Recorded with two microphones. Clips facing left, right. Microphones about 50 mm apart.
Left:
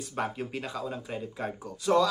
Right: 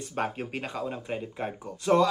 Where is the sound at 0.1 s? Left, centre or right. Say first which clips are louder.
Right 1 dB; right.